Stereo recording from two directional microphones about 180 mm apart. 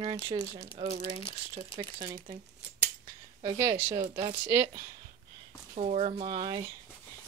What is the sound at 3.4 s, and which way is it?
A woman's voice, 25° right (ahead or behind).